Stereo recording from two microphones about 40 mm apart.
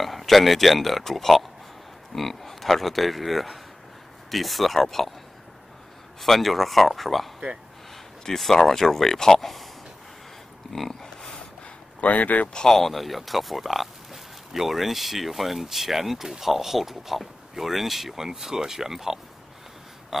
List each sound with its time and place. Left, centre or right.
0.0 s speech: centre
6.2 s speech: centre
8.3 s speech: centre
9.4 s speech: centre
10.7 s a sound: centre
12.0 s speech: left
12.5 s speech: centre